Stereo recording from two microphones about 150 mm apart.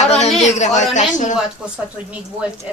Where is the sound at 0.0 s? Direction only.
45° left (ahead or behind).